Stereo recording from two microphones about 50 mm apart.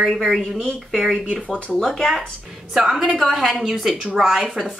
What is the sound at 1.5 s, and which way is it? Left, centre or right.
Speech, centre.